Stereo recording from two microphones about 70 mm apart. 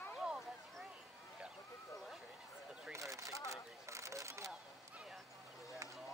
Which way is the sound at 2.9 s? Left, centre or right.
Right.